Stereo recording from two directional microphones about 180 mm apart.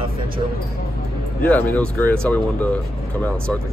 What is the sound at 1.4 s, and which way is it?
Speech, 10° left (ahead or behind).